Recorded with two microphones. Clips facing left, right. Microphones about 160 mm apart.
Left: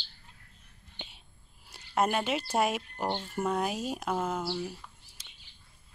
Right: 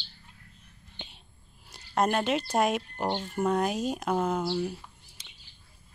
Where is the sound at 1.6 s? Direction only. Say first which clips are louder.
Right 2 dB; 5° left (ahead or behind).